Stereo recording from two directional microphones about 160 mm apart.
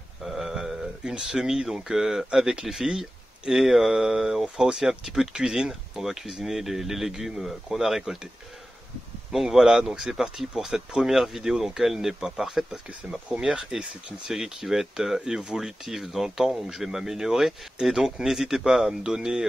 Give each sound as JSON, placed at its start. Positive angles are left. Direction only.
{"t": 0.2, "sound": "speech", "side_deg": 0}
{"t": 9.3, "sound": "speech", "side_deg": 0}